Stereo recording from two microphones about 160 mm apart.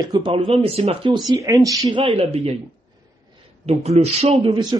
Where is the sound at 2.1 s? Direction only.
40° right (ahead or behind).